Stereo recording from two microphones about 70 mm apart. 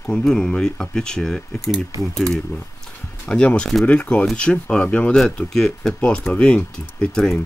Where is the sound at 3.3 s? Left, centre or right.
Centre.